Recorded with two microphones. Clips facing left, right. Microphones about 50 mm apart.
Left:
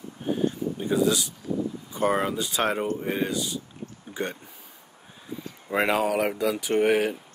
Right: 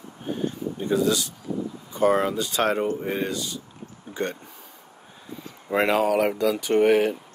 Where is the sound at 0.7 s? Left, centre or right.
Centre.